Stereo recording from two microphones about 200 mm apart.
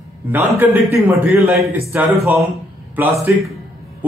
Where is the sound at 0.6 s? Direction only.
10° right (ahead or behind).